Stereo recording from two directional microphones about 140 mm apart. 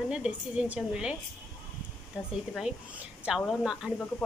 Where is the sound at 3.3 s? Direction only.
5° right (ahead or behind).